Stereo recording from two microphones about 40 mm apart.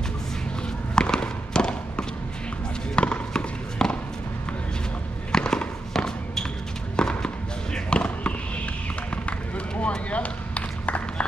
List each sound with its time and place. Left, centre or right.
0.9 s a sound: left
3.0 s music: left
5.3 s fireworks: centre
5.9 s basketball bounce: centre
7.0 s a sound: centre
7.7 s basketball bounce: left
9.8 s run: left